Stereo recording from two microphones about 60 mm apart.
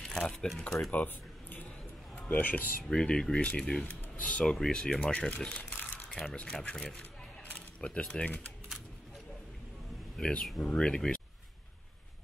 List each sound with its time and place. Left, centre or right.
0.0 s speech: centre
0.9 s a sound: left
2.2 s speech: left
2.8 s speech: centre
5.3 s speech: left
7.8 s speech: centre
10.1 s speech: centre